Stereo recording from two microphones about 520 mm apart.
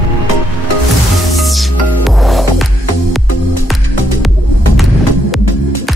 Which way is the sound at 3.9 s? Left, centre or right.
Left.